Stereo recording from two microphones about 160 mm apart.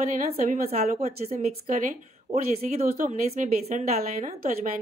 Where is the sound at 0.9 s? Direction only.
45° right (ahead or behind).